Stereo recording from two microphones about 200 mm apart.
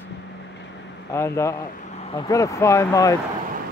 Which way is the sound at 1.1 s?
15° left (ahead or behind).